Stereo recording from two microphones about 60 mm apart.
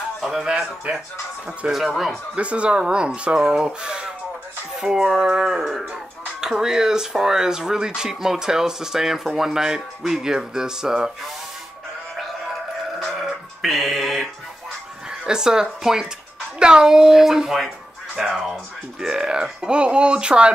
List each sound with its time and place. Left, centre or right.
0.2 s speech: centre
1.7 s speech: centre
2.3 s speech: centre
13.0 s a sound: centre
15.0 s speech: centre